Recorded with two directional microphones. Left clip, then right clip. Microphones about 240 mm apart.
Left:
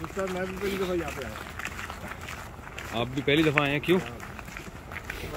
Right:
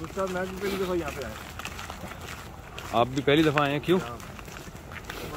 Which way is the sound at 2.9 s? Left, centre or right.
Centre.